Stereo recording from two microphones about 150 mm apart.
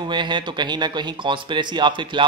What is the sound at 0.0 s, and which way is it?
Speech, 30° right (ahead or behind).